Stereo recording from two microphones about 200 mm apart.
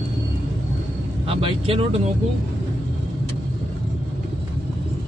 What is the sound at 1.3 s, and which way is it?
Speech, 25° right (ahead or behind).